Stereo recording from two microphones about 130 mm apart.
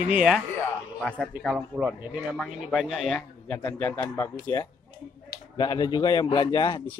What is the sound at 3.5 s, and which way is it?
Speech, 15° left (ahead or behind).